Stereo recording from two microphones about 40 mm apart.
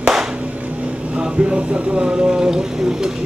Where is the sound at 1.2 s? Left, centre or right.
Right.